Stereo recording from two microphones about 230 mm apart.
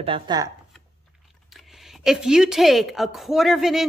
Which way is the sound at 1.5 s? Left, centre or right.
Centre.